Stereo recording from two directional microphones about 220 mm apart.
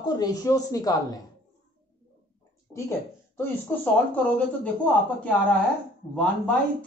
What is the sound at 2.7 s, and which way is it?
A man's voice, 10° left (ahead or behind).